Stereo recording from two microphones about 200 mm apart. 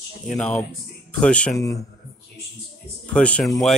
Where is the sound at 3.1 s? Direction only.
5° left (ahead or behind).